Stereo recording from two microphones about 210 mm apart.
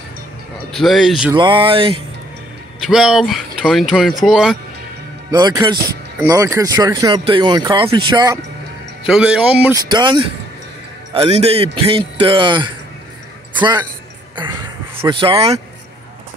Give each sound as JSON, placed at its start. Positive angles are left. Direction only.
{"t": 0.7, "sound": "speech", "side_deg": 0}
{"t": 1.3, "sound": "a man's voice", "side_deg": -25}
{"t": 2.8, "sound": "speech", "side_deg": 0}
{"t": 5.3, "sound": "a man's voice", "side_deg": -20}
{"t": 9.0, "sound": "a man's voice", "side_deg": -5}